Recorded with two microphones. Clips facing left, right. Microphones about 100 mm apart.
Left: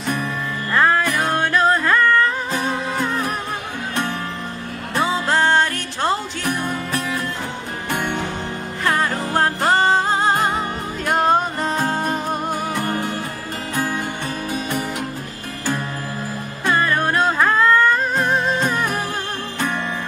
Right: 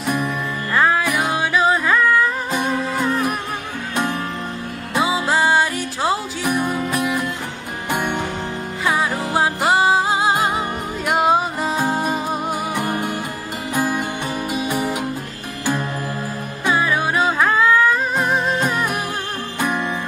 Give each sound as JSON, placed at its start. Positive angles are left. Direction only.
{"t": 0.7, "sound": "music", "side_deg": 0}
{"t": 4.9, "sound": "music", "side_deg": -5}
{"t": 12.7, "sound": "music", "side_deg": -15}
{"t": 16.6, "sound": "music", "side_deg": -5}